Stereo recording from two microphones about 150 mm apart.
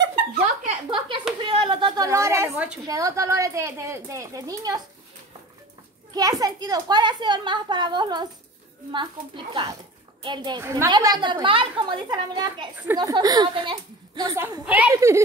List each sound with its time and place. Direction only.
0.8 s a sound: 30° right (ahead or behind)
2.0 s a woman's voice: 20° right (ahead or behind)
2.9 s a woman's voice: 20° right (ahead or behind)
6.1 s a woman's voice: 25° right (ahead or behind)
10.6 s a woman's voice: 20° right (ahead or behind)